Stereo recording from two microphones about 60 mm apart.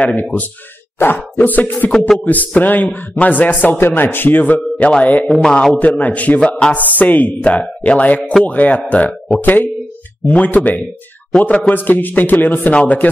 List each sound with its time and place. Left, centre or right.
0.0 s a man's voice: left
0.9 s plop: left
1.9 s a man's voice: centre
2.2 s a man's voice: left
3.6 s plop: left
4.7 s a man's voice: left
5.3 s a man's voice: centre
5.8 s a man's voice: left
9.4 s plop: left
10.3 s a man's voice: left